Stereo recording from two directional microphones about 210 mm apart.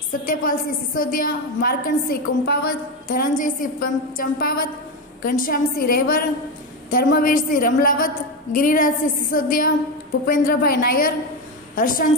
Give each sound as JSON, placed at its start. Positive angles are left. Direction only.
{"t": 0.2, "sound": "a woman's voice", "side_deg": 40}